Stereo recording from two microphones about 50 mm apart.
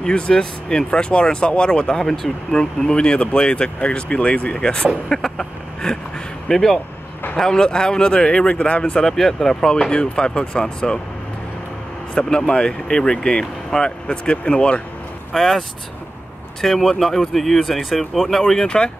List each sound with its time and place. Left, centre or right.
0.0 s speech: centre
9.0 s speech: centre
12.2 s speech: centre
15.3 s speech: centre
16.6 s speech: centre